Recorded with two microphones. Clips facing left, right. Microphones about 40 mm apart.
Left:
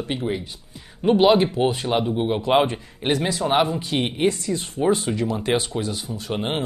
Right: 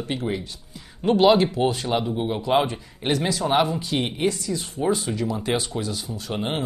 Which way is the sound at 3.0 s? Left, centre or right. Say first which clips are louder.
Left 1 dB; centre.